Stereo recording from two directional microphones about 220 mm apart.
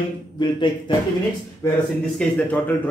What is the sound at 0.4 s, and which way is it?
Speech, 20° left (ahead or behind).